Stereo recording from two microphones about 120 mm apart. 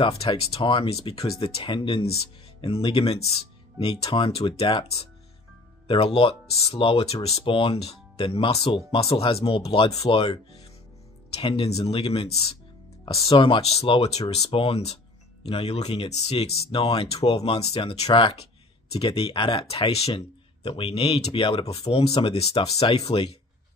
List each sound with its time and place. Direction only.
0.2 s speech: 55° left (ahead or behind)
11.4 s speech: 50° left (ahead or behind)
19.0 s speech: 45° left (ahead or behind)